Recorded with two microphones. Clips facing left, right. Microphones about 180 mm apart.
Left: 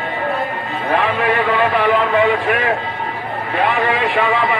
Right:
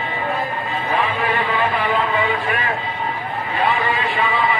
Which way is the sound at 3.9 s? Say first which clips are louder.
Left 4 dB; 90° left.